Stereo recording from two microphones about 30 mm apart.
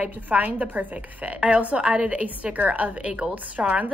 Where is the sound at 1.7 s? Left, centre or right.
Right.